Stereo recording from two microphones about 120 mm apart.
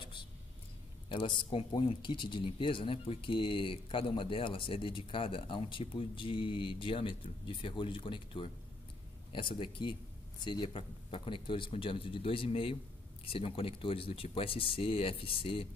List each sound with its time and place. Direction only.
0.0 s vehicle: 40° left (ahead or behind)
1.0 s speech: 40° left (ahead or behind)